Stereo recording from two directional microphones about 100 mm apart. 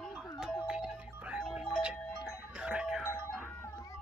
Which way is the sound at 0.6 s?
10° right (ahead or behind).